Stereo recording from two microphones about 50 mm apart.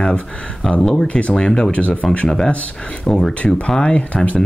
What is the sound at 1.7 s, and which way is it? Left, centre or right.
Speech, left.